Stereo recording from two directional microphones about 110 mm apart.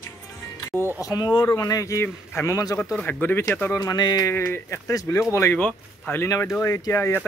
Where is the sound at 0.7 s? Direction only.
25° right (ahead or behind).